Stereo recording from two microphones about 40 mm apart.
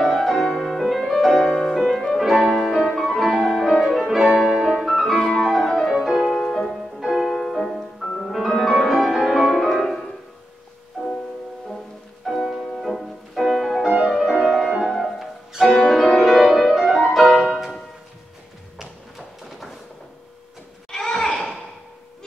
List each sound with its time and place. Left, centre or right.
0.0 s music: centre
2.2 s music: centre
4.1 s music: centre
5.9 s music: centre
12.2 s music: centre
15.6 s music: centre
16.2 s music: centre
17.1 s music: centre
18.8 s a sound: centre
20.9 s a sound: centre